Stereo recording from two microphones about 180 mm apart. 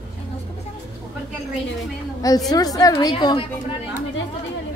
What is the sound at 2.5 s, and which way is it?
A woman's voice, 20° left (ahead or behind).